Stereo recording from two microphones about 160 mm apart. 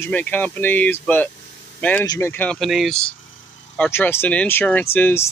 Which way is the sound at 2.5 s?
Centre (ahead or behind).